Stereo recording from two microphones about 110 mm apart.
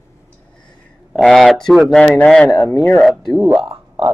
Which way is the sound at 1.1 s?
Centre (ahead or behind).